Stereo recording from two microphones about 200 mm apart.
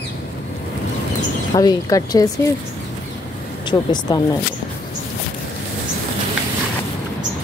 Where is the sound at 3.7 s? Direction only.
20° left (ahead or behind).